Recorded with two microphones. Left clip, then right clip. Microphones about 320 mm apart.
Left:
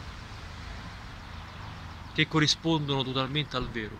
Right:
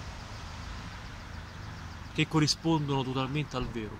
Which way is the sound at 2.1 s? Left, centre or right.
Centre.